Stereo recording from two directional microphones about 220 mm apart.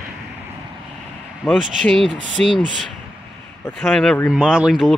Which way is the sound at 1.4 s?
5° right (ahead or behind).